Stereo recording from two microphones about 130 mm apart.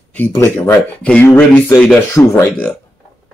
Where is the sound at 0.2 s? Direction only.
15° left (ahead or behind).